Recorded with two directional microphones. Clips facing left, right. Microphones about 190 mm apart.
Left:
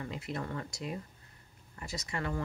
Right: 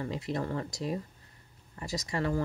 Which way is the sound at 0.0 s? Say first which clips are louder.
Right 5 dB; 35° right (ahead or behind).